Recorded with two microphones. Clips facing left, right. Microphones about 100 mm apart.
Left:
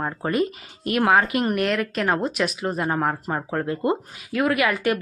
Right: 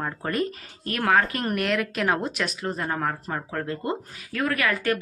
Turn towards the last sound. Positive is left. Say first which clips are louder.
# left 3 dB
turn(degrees=15)  # may be behind; listen again after turning